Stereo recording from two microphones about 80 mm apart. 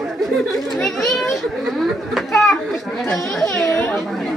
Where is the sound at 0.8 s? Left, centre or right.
Centre.